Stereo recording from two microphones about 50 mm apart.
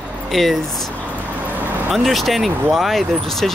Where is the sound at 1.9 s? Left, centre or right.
Centre.